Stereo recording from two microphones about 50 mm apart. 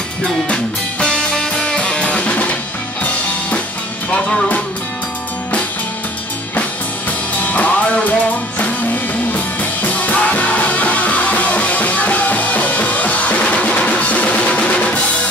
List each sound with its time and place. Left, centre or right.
1.0 s music: centre; by 3.6 s left
4.1 s music: centre
7.1 s music: left